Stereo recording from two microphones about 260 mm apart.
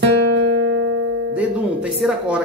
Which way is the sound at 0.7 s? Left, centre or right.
Right.